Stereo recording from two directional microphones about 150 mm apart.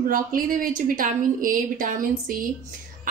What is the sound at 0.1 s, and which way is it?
A woman's voice, 65° right (ahead or behind).